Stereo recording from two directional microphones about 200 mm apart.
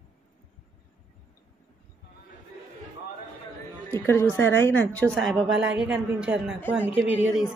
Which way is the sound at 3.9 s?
10° left (ahead or behind).